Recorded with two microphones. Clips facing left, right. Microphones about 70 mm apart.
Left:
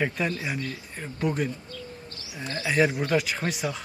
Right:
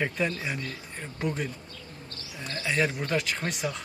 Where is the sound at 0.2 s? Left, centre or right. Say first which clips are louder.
Left 1 dB; centre.